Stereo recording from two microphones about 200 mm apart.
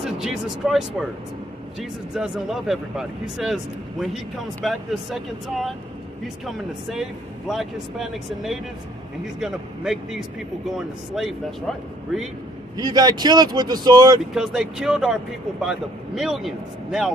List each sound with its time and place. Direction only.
0.2 s speech: centre (ahead or behind)
12.7 s speech: 20° right (ahead or behind)
14.3 s speech: 5° right (ahead or behind)